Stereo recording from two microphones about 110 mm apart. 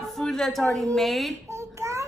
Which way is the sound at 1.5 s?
25° right (ahead or behind).